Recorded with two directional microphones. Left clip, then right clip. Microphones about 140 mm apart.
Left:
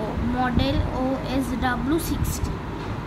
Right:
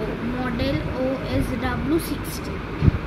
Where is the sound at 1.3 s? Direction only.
35° left (ahead or behind).